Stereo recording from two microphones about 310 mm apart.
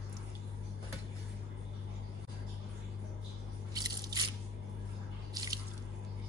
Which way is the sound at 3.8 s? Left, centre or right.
Centre.